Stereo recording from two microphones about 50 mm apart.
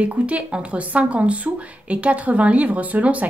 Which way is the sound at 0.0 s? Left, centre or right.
Right.